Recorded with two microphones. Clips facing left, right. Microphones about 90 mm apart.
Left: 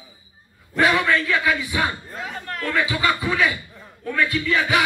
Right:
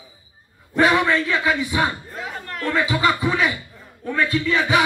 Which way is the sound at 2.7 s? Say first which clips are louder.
Right 2 dB; 25° right (ahead or behind).